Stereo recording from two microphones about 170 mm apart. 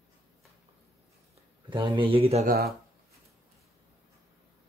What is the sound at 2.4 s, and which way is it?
Speech, 65° right (ahead or behind).